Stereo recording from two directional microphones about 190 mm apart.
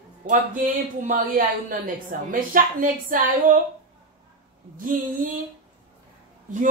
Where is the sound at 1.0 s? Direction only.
45° right (ahead or behind).